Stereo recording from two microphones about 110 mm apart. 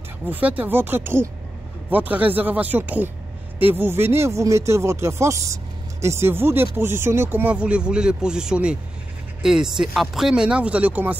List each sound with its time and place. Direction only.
0.3 s speech: 15° right (ahead or behind)